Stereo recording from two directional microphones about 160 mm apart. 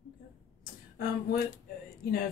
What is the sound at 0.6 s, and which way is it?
Speech, 70° left (ahead or behind).